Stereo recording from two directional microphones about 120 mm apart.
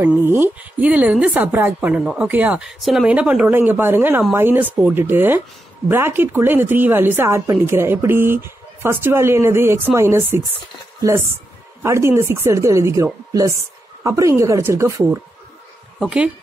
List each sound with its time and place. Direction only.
0.0 s a woman's voice: 15° right (ahead or behind)
16.0 s a woman's voice: 10° right (ahead or behind)